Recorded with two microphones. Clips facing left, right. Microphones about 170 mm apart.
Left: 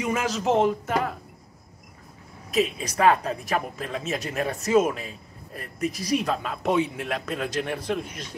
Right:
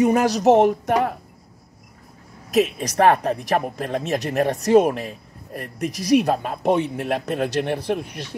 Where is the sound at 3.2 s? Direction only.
40° right (ahead or behind).